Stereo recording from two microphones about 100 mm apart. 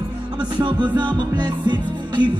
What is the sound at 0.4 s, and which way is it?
Music, 50° right (ahead or behind).